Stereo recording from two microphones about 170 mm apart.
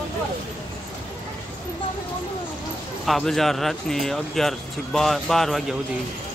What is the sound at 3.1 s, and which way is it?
Speech, centre (ahead or behind).